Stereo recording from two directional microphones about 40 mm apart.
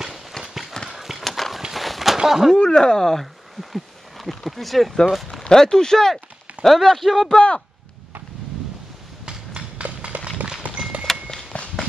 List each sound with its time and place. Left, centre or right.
0.4 s clip-clop: centre
1.7 s a sound: centre
2.2 s speech: centre
2.5 s speech: centre
3.7 s a sound: centre
4.5 s speech: centre
5.4 s speech: centre
7.3 s speech: left
9.5 s clip-clop: right
10.2 s tap: centre
11.1 s a sound: centre
11.5 s run: left